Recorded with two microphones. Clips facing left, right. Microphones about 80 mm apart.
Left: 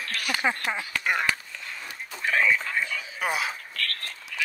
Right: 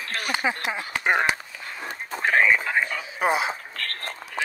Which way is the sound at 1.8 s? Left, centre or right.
Right.